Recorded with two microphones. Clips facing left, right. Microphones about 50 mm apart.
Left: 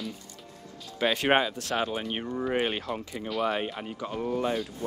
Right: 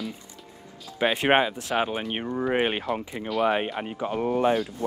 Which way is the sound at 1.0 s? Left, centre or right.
Right.